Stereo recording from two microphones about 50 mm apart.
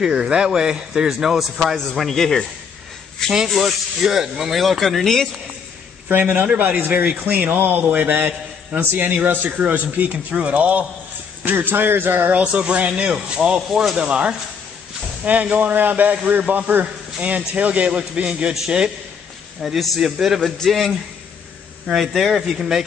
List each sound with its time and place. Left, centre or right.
0.0 s a man's voice: centre
3.4 s speech: centre
6.3 s a man's voice: right
11.4 s speech: right
12.4 s a man's voice: right
15.5 s a man's voice: right
19.6 s speech: centre
20.3 s a man's voice: centre